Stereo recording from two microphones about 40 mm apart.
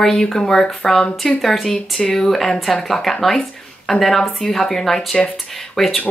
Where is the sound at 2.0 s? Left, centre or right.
Centre.